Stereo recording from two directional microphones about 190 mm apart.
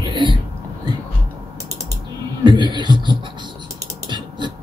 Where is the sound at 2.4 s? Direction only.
25° right (ahead or behind).